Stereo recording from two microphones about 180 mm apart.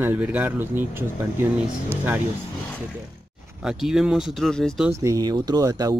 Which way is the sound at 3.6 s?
5° right (ahead or behind).